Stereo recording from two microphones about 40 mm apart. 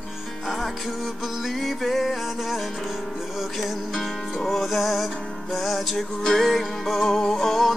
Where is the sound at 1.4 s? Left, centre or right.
Centre.